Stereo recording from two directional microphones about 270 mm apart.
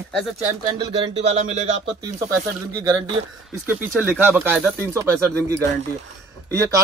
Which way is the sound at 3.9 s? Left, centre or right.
Centre.